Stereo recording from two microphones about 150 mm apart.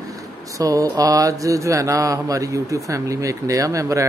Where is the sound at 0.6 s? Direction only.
25° right (ahead or behind).